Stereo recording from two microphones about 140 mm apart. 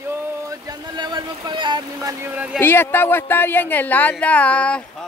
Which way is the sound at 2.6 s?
15° left (ahead or behind).